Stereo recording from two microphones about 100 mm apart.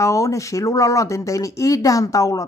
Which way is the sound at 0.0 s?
30° left (ahead or behind).